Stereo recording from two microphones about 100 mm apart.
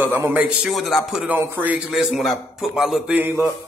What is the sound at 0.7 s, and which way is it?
Speech, centre (ahead or behind).